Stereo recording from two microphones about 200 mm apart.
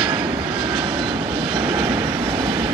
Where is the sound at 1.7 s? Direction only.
25° right (ahead or behind).